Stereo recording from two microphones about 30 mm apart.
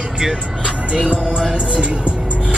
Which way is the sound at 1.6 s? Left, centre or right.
Right.